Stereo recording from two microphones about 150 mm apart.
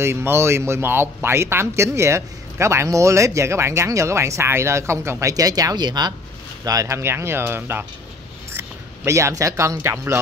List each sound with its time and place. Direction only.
0.0 s speech: 15° right (ahead or behind)